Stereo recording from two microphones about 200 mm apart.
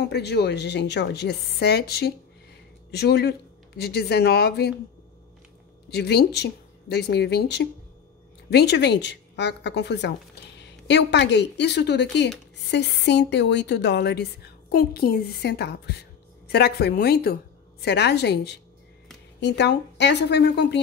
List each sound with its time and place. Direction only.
0.0 s a woman's voice: 55° left (ahead or behind)
5.9 s a woman's voice: 55° left (ahead or behind)